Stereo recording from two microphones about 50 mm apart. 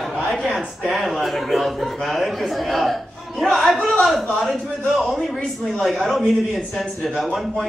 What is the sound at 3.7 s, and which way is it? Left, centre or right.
Speech, left.